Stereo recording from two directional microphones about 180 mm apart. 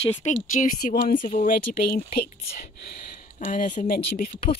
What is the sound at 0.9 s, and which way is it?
Speech, 50° left (ahead or behind).